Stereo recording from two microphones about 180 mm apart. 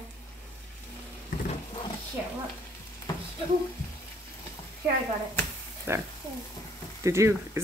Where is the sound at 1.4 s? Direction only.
30° left (ahead or behind).